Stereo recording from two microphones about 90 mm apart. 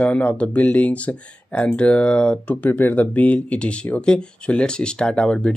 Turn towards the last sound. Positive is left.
turn(degrees=10)  # may be behind; listen again after turning